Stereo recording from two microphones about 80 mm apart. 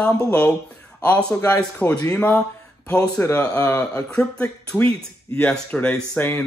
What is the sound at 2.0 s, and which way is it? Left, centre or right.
Speech, left.